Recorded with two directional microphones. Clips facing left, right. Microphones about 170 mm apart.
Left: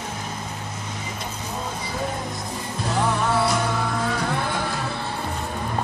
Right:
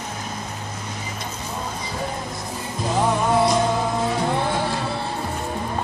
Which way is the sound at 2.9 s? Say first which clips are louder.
Right 3 dB; 15° right (ahead or behind).